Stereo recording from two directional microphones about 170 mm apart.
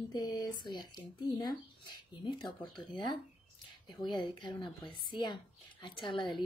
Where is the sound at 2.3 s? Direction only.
30° left (ahead or behind).